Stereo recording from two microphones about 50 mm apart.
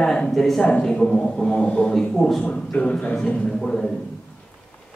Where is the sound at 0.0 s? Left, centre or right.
Centre.